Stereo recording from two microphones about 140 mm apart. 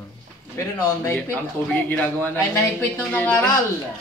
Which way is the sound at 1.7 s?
10° left (ahead or behind).